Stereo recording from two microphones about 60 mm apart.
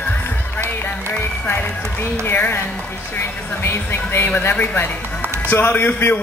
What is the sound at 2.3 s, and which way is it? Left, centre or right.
Speech, left.